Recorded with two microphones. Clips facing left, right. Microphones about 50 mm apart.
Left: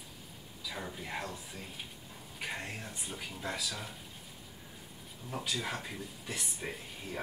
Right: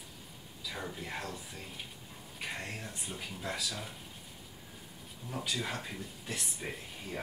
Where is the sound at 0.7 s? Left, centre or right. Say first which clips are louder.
Even; centre.